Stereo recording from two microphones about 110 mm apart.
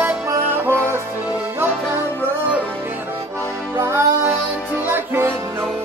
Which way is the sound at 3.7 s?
20° right (ahead or behind).